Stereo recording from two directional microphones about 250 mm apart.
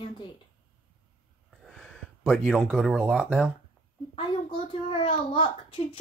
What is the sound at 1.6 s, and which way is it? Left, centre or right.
Speech, centre.